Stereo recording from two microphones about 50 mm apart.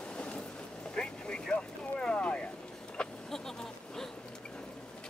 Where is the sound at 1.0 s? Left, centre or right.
Centre.